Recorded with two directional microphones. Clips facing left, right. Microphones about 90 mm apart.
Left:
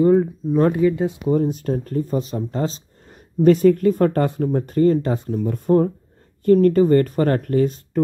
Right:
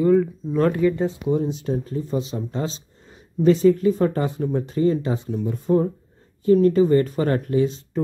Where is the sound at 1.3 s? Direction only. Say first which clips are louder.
Left 5 dB; 50° left (ahead or behind).